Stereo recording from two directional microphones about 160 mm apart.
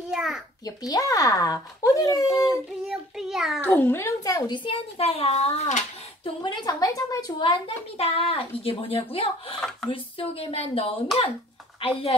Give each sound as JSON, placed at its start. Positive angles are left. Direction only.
{"t": 0.1, "sound": "a sound", "side_deg": -5}
{"t": 0.7, "sound": "speech", "side_deg": 20}
{"t": 2.9, "sound": "a child's voice", "side_deg": 0}
{"t": 3.6, "sound": "speech", "side_deg": 15}
{"t": 4.6, "sound": "speech", "side_deg": 35}
{"t": 6.4, "sound": "speech", "side_deg": 25}